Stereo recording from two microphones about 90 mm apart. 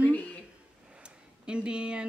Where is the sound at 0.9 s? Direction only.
10° right (ahead or behind).